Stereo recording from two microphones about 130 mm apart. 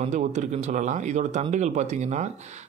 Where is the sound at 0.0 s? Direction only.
70° right (ahead or behind).